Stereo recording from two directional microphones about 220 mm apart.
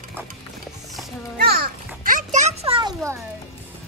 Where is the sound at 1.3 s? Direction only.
45° right (ahead or behind); by 3.2 s 15° right (ahead or behind).